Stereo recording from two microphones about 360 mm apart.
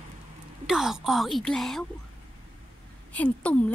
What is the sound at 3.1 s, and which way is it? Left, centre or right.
Speech, centre.